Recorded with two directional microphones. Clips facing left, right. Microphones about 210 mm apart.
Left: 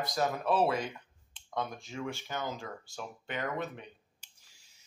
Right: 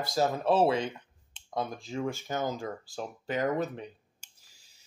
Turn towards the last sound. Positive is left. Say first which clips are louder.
# right 7 dB
turn(degrees=-40)  # may be behind; listen again after turning